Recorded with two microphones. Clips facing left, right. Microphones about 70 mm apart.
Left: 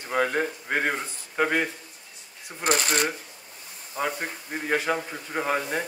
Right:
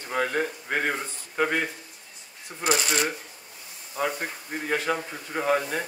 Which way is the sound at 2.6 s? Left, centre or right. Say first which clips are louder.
Left 1 dB; left.